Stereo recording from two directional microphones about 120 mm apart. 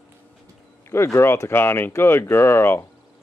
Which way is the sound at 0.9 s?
20° left (ahead or behind).